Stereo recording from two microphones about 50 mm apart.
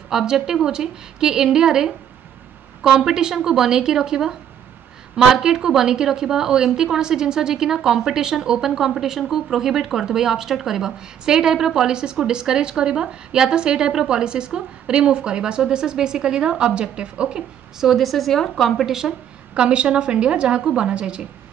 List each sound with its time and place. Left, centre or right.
0.1 s speech: centre
17.8 s a woman's voice: centre
19.5 s a woman's voice: right